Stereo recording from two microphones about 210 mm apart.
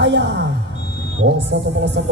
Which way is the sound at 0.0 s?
55° right (ahead or behind).